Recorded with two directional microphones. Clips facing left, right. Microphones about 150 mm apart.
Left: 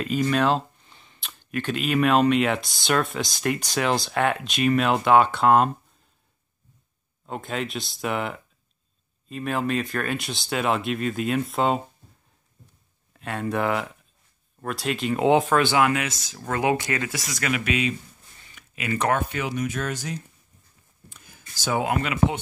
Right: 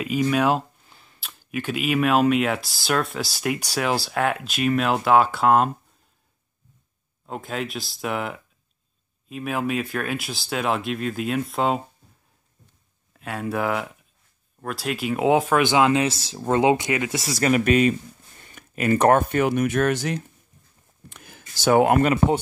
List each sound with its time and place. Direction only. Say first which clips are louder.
0.0 s speech: right 1 dB; 10° right (ahead or behind)
7.2 s speech: even; centre (ahead or behind)
13.1 s speech: even; centre (ahead or behind); by 17.2 s 15° right (ahead or behind)
17.2 s speech: right 7 dB; 35° right (ahead or behind)